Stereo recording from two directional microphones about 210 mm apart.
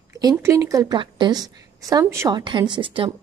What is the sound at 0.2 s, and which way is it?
A woman's voice, 15° right (ahead or behind).